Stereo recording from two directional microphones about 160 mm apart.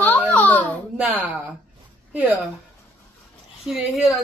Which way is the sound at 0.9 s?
10° right (ahead or behind).